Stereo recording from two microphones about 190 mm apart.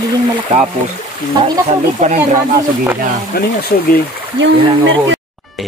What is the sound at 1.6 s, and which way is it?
Speech, 40° right (ahead or behind).